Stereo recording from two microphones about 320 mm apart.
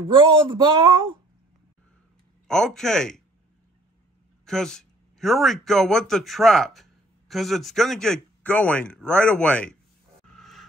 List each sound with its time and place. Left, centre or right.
0.1 s speech: centre
2.4 s speech: centre
4.5 s speech: centre
10.4 s music: centre